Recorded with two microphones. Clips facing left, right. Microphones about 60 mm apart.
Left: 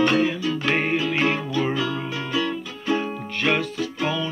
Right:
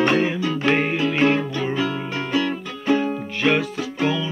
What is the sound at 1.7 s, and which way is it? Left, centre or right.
Music, right.